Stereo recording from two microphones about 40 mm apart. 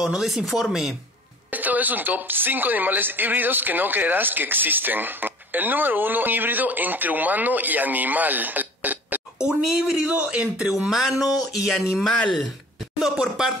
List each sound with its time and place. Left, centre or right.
0.0 s speech: centre
1.5 s a woman's voice: right
9.4 s speech: centre
10.1 s speech: right
10.9 s speech: centre
13.0 s speech: centre